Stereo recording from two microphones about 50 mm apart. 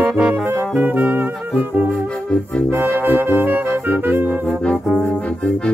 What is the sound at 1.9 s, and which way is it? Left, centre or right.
Music, left.